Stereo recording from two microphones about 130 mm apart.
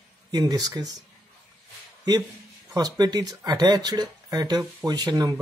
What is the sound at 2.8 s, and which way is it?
Speech, 30° right (ahead or behind).